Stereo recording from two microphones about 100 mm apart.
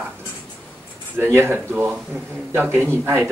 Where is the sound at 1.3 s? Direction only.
20° right (ahead or behind).